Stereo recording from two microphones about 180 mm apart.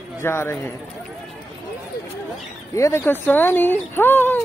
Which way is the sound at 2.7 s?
15° left (ahead or behind).